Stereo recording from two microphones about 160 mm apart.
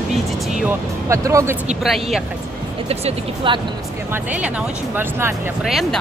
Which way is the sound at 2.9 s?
35° right (ahead or behind).